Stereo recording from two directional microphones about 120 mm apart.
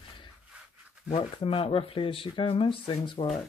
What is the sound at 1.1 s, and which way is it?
Speech, 55° left (ahead or behind).